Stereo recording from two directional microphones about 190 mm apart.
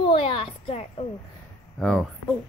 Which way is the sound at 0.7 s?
30° left (ahead or behind).